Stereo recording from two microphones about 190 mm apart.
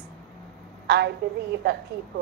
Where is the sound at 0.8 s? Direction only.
60° right (ahead or behind).